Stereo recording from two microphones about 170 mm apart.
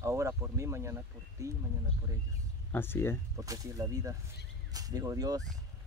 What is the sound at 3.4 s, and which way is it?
Speech, 20° right (ahead or behind).